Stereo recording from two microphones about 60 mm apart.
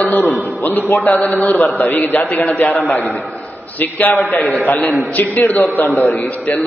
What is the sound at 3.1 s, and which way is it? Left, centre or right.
Speech, centre.